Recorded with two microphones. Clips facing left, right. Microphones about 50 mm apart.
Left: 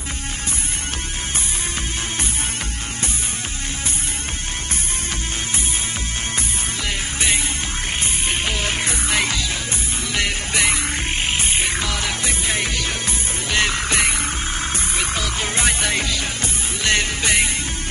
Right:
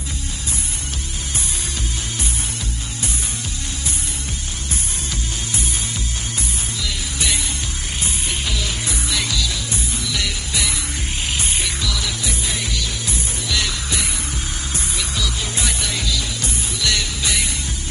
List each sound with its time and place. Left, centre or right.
6.8 s music: left